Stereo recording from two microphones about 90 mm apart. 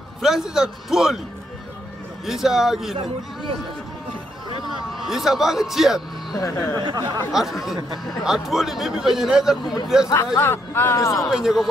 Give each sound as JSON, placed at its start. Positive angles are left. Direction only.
{"t": 0.2, "sound": "speech", "side_deg": -5}
{"t": 2.2, "sound": "speech", "side_deg": -5}
{"t": 4.9, "sound": "speech", "side_deg": 0}
{"t": 6.3, "sound": "speech", "side_deg": 40}
{"t": 6.8, "sound": "speech", "side_deg": -55}
{"t": 7.3, "sound": "speech", "side_deg": 0}
{"t": 10.1, "sound": "speech", "side_deg": 25}
{"t": 11.3, "sound": "speech", "side_deg": -5}